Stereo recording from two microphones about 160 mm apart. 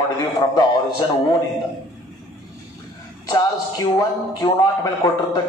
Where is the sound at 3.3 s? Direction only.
25° left (ahead or behind).